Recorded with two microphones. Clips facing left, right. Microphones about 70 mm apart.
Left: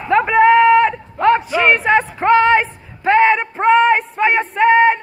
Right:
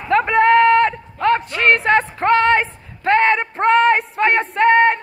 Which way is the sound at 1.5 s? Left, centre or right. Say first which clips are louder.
Left 1 dB; centre.